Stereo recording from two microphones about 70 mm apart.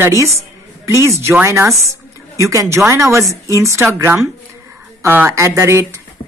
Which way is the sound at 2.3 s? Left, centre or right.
Right.